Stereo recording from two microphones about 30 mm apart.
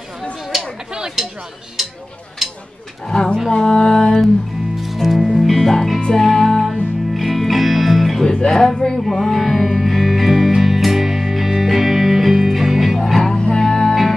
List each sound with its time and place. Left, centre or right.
1.2 s speech: centre
1.8 s a sound: centre
3.1 s speech: centre
3.5 s music: left
4.7 s music: centre
5.7 s speech: centre
6.2 s music: centre
8.5 s speech: centre
9.0 s music: centre
13.1 s music: centre